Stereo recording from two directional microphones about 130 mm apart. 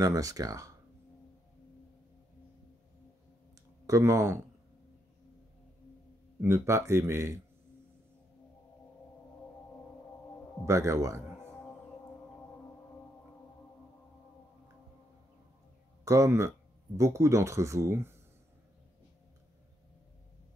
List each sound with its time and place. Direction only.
0.0 s speech: 25° right (ahead or behind)
3.8 s speech: 25° right (ahead or behind)
6.4 s speech: 20° right (ahead or behind)
10.6 s speech: 20° right (ahead or behind)
16.0 s speech: 25° right (ahead or behind)